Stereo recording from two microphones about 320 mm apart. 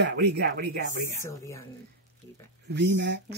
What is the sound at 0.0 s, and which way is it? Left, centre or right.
Speech, right.